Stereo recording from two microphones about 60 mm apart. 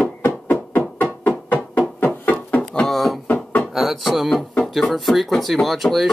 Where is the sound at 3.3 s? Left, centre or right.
Left.